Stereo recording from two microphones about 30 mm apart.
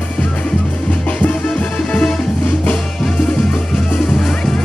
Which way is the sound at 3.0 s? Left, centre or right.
Left.